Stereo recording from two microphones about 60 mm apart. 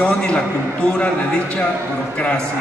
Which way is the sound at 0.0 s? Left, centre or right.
Centre.